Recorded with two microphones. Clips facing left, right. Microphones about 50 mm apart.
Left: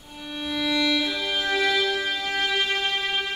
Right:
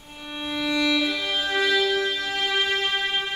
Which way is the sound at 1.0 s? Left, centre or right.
Centre.